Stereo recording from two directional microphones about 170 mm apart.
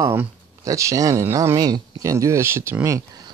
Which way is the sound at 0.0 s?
15° right (ahead or behind).